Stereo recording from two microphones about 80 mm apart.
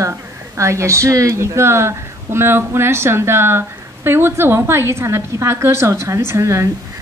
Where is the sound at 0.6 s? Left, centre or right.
Right.